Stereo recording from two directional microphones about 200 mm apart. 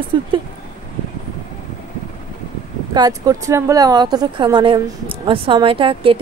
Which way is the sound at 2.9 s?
20° right (ahead or behind).